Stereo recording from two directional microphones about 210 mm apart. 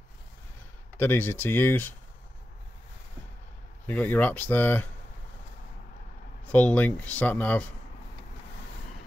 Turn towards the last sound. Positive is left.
turn(degrees=10)  # may be behind; listen again after turning